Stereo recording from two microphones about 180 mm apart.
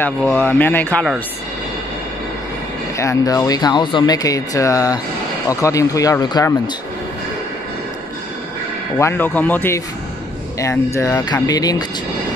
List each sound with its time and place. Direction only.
0.0 s speech: 10° left (ahead or behind)
3.0 s speech: 20° left (ahead or behind)
8.9 s speech: 10° left (ahead or behind)